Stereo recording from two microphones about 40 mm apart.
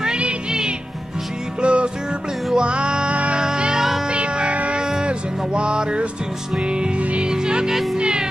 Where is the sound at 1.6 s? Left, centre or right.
Right.